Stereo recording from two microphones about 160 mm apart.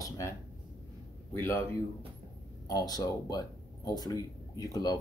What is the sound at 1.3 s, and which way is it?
Speech, 15° left (ahead or behind).